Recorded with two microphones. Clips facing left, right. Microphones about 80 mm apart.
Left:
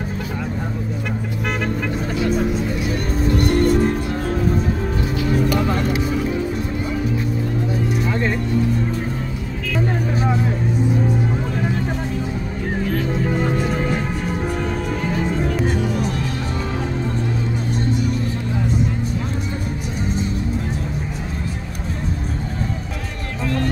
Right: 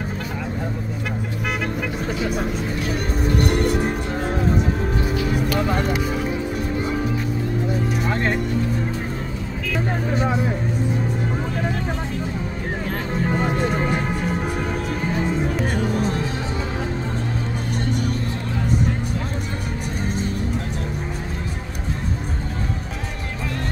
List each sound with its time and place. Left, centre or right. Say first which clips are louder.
3.3 s music: left 4 dB; centre
13.6 s music: even; centre
15.8 s music: even; right